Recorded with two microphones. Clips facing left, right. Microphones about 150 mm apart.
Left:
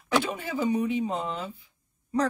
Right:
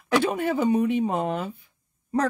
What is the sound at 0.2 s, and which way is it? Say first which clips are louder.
Speech: right 6 dB; 60° right (ahead or behind).